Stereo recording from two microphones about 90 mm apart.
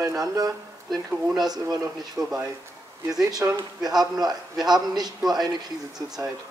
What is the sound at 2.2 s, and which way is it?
A man's voice, 45° right (ahead or behind).